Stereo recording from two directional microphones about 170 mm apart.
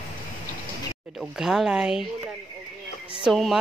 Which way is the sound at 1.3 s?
Centre (ahead or behind).